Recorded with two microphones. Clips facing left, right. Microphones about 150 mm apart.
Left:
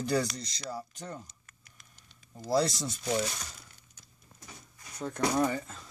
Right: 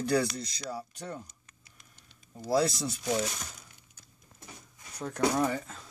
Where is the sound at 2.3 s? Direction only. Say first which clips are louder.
Right 1 dB; 5° right (ahead or behind).